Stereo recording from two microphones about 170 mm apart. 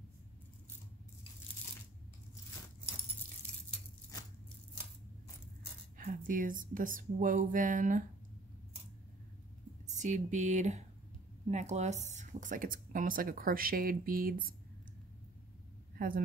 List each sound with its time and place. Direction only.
5.9 s speech: 50° right (ahead or behind)
9.8 s speech: 45° right (ahead or behind)
16.0 s speech: 55° right (ahead or behind)